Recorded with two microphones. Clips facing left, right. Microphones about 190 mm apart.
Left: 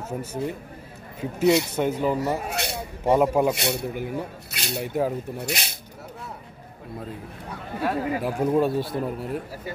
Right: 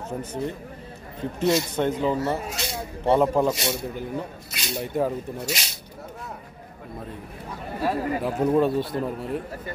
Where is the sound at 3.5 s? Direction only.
60° left (ahead or behind).